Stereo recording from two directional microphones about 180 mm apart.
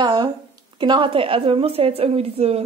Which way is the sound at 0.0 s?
25° right (ahead or behind).